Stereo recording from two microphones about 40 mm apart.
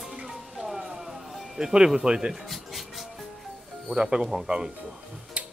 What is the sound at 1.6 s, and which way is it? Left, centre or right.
Speech, centre.